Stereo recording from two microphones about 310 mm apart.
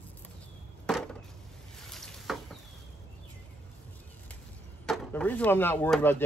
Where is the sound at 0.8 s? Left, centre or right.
Centre.